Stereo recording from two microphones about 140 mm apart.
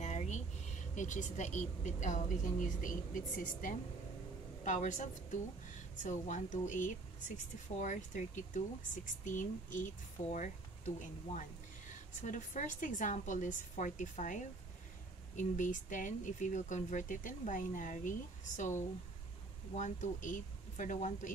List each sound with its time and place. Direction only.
0.0 s a woman's voice: 55° left (ahead or behind)
12.2 s speech: 65° left (ahead or behind)
19.7 s speech: 60° left (ahead or behind)